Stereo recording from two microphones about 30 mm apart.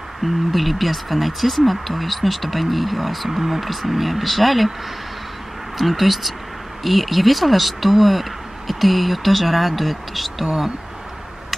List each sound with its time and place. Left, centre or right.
0.2 s speech: centre
5.8 s speech: centre
10.4 s speech: centre